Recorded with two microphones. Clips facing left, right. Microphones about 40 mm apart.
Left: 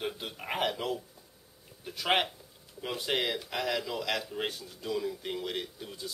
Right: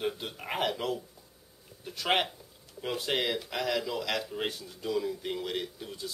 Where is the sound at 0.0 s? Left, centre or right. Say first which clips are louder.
Right 2 dB; centre.